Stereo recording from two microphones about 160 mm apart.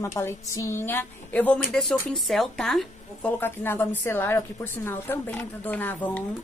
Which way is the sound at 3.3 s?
15° left (ahead or behind).